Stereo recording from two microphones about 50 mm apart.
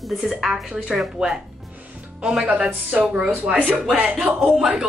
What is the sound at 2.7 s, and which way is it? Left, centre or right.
Speech, right.